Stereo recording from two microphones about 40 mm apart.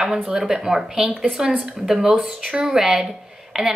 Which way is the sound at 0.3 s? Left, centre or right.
Centre.